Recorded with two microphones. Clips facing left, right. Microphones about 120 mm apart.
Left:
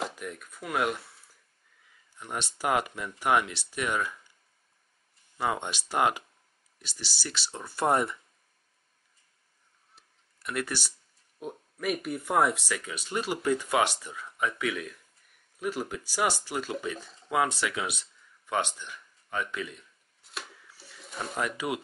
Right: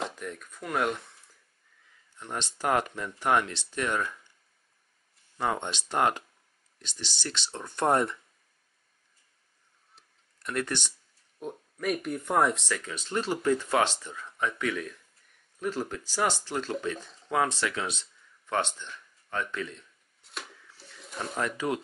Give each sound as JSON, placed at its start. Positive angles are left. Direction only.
{"t": 0.0, "sound": "speech", "side_deg": 5}
{"t": 2.1, "sound": "speech", "side_deg": 10}
{"t": 5.4, "sound": "speech", "side_deg": 10}
{"t": 9.9, "sound": "a sound", "side_deg": 5}
{"t": 11.3, "sound": "speech", "side_deg": 5}
{"t": 20.2, "sound": "bird", "side_deg": 5}